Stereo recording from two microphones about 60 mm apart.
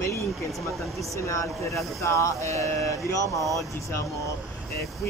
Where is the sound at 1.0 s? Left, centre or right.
Left.